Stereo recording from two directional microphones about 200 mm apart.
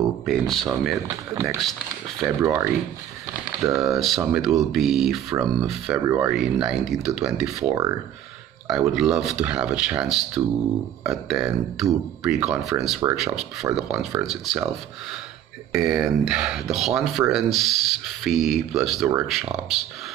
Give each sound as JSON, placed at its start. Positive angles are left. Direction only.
{"t": 0.2, "sound": "speech", "side_deg": 0}
{"t": 1.0, "sound": "speech", "side_deg": -15}
{"t": 3.7, "sound": "speech", "side_deg": 0}
{"t": 6.0, "sound": "speech", "side_deg": -10}
{"t": 8.6, "sound": "speech", "side_deg": 0}
{"t": 15.7, "sound": "speech", "side_deg": -5}